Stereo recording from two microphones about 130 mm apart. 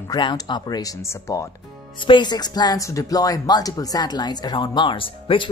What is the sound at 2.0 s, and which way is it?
Speech, 35° left (ahead or behind).